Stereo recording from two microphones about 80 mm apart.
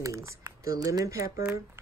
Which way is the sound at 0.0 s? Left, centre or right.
Right.